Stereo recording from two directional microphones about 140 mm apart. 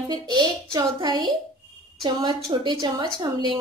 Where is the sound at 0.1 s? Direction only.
30° right (ahead or behind).